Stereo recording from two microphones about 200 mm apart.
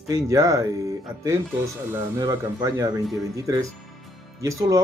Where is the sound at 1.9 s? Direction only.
20° right (ahead or behind).